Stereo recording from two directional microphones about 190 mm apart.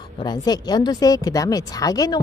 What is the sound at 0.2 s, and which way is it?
A woman's voice, 20° left (ahead or behind).